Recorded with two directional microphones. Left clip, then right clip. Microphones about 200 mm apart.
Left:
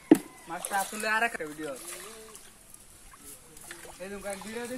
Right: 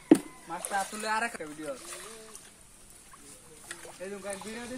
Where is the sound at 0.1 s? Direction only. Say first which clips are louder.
Left 1 dB; 15° right (ahead or behind).